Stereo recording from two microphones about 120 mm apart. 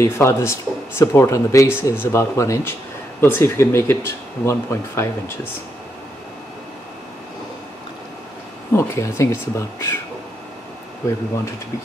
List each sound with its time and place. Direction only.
0.0 s speech: 25° left (ahead or behind)
8.7 s speech: 25° left (ahead or behind)